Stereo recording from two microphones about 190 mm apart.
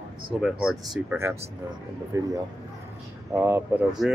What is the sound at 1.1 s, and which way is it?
Speech, 15° right (ahead or behind).